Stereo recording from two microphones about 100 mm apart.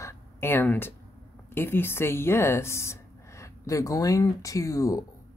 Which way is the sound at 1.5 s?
20° left (ahead or behind).